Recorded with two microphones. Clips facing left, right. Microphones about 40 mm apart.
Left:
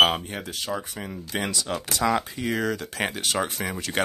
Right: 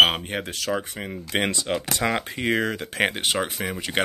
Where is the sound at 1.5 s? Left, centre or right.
Right.